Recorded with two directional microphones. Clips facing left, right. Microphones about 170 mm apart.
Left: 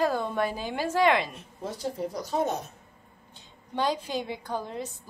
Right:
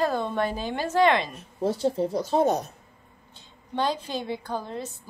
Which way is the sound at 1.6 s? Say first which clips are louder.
Right 8 dB; 30° right (ahead or behind).